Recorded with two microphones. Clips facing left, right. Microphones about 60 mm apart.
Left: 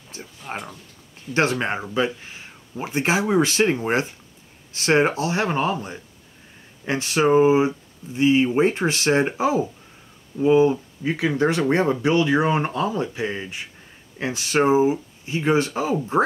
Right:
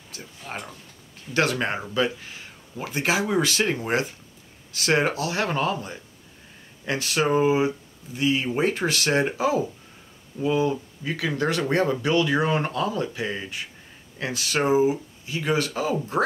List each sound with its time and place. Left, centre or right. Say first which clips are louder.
0.2 s speech: left 3 dB; centre
1.3 s speech: left 2 dB; left
4.7 s speech: left 4 dB; left